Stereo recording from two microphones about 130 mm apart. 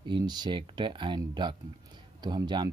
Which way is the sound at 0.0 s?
35° right (ahead or behind).